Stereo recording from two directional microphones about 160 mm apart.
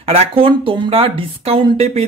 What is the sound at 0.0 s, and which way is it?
Speech, 35° right (ahead or behind).